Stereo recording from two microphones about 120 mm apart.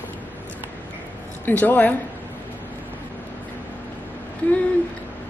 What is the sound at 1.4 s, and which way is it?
Speech, 15° left (ahead or behind).